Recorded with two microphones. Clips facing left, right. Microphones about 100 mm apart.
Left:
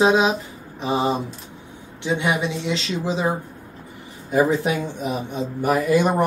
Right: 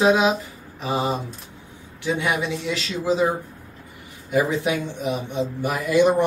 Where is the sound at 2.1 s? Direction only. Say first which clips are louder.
Left 2 dB; 20° left (ahead or behind).